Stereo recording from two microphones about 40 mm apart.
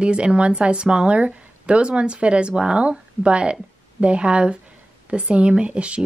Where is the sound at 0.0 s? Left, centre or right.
Right.